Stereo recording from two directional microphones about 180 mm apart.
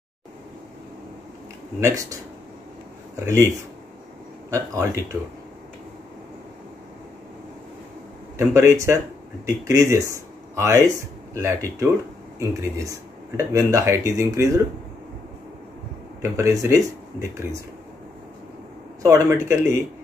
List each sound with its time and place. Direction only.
1.8 s speech: 15° right (ahead or behind)
3.3 s speech: 15° right (ahead or behind)
8.4 s speech: 15° right (ahead or behind)
16.2 s speech: 15° right (ahead or behind)
19.0 s speech: 15° right (ahead or behind)